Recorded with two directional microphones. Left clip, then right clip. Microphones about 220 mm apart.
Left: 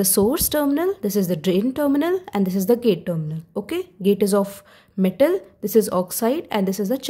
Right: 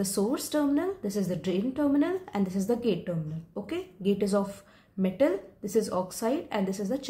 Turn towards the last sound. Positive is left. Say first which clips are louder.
# left 8 dB
turn(degrees=45)  # may be behind; listen again after turning